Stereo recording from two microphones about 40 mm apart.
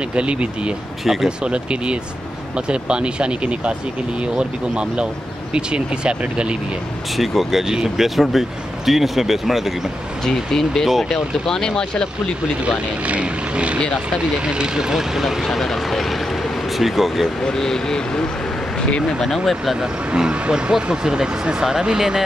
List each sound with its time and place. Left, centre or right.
0.1 s speech: right
1.0 s speech: centre
1.4 s speech: right
7.2 s speech: centre
7.6 s speech: centre
8.2 s speech: centre
10.2 s speech: centre
12.6 s speech: right; by 17.3 s centre
17.5 s speech: centre
19.1 s speech: centre
20.2 s speech: right